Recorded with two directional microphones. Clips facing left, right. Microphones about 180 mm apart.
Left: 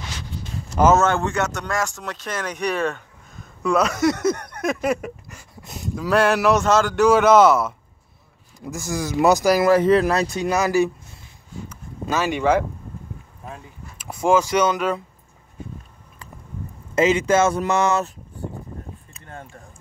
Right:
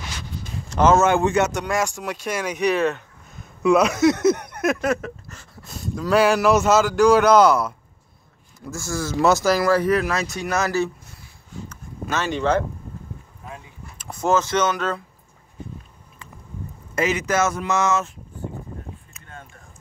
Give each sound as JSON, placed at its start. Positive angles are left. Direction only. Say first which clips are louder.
{"t": 0.7, "sound": "a sound", "louder": "left 1 dB", "side_deg": 5}
{"t": 0.9, "sound": "speech", "louder": "right 2 dB", "side_deg": -15}
{"t": 4.8, "sound": "speech", "louder": "even", "side_deg": 15}
{"t": 5.9, "sound": "a man's voice", "louder": "right 1 dB", "side_deg": 0}
{"t": 8.5, "sound": "speech", "louder": "left 1 dB", "side_deg": 15}
{"t": 10.5, "sound": "speech", "louder": "left 3 dB", "side_deg": 15}
{"t": 11.7, "sound": "a sound", "louder": "left 2 dB", "side_deg": 10}
{"t": 13.9, "sound": "speech", "louder": "left 2 dB", "side_deg": 10}
{"t": 16.9, "sound": "speech", "louder": "left 5 dB", "side_deg": 25}
{"t": 19.1, "sound": "a sound", "louder": "left 4 dB", "side_deg": 35}